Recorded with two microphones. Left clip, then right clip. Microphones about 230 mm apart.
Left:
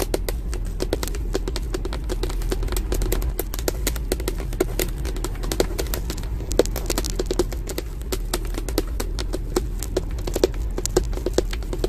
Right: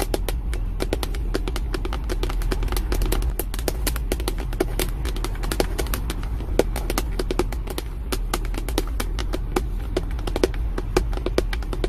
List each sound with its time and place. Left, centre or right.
0.7 s clip-clop: centre
3.8 s a sound: centre
8.7 s clip-clop: centre